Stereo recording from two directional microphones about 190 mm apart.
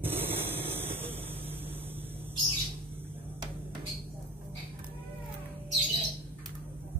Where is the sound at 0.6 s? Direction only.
30° right (ahead or behind).